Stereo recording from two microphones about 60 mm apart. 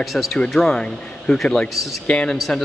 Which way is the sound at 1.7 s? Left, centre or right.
Centre.